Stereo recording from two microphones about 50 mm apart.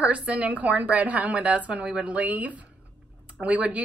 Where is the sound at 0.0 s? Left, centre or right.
Right.